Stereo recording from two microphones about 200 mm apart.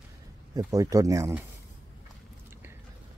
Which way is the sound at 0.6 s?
15° right (ahead or behind).